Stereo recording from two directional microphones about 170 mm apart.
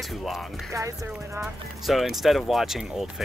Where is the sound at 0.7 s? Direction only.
20° right (ahead or behind).